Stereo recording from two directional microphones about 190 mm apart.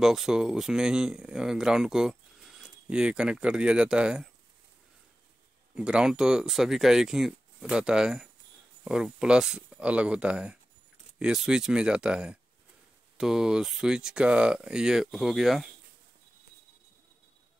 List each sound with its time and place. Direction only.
0.0 s speech: centre (ahead or behind)
5.8 s speech: 5° right (ahead or behind)